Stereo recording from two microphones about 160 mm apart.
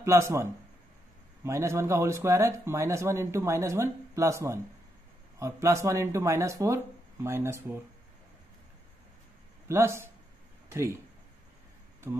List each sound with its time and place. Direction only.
0.0 s speech: 20° right (ahead or behind)
9.7 s speech: 15° right (ahead or behind)
12.1 s speech: 15° right (ahead or behind)